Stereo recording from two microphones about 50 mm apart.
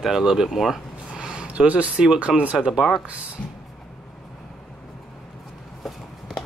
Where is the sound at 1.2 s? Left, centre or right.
Centre.